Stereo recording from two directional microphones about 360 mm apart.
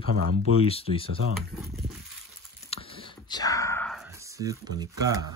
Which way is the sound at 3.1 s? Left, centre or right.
Centre.